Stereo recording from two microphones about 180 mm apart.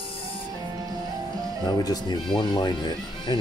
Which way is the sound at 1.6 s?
20° left (ahead or behind).